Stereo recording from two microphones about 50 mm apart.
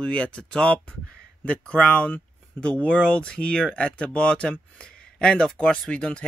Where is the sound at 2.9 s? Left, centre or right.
Left.